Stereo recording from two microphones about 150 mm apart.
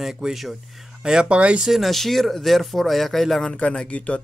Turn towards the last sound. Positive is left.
turn(degrees=10)  # may be behind; listen again after turning